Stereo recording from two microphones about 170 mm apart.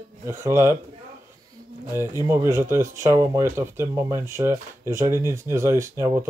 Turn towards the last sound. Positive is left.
turn(degrees=-15)  # may be behind; listen again after turning